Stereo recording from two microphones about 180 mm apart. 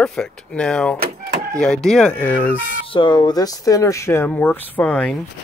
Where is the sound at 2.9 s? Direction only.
25° left (ahead or behind); by 5.2 s 5° left (ahead or behind).